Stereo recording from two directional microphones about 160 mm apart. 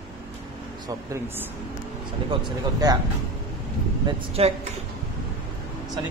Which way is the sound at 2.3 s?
30° right (ahead or behind).